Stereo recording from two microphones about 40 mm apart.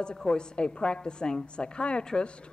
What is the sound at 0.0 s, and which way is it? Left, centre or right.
A woman's voice, centre.